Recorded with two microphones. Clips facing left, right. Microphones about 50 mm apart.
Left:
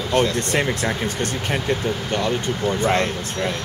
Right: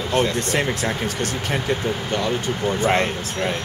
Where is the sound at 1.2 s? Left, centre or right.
Left.